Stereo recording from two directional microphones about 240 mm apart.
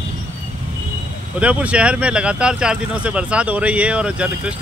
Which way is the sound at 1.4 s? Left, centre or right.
Centre.